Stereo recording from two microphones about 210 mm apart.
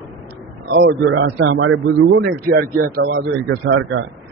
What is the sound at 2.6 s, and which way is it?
A man's voice, 55° right (ahead or behind).